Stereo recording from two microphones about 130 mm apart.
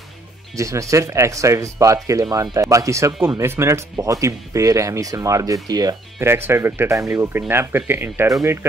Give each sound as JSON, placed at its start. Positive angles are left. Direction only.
{"t": 0.6, "sound": "speech", "side_deg": -25}
{"t": 6.1, "sound": "speech", "side_deg": -20}